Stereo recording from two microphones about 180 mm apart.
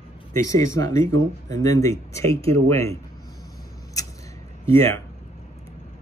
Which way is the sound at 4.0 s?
20° left (ahead or behind).